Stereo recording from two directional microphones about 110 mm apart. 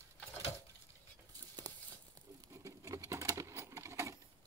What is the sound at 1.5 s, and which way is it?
Patter, 35° right (ahead or behind).